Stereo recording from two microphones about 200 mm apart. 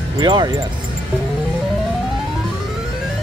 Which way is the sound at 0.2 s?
20° right (ahead or behind).